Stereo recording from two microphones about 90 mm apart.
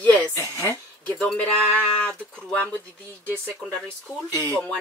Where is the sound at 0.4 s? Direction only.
30° right (ahead or behind).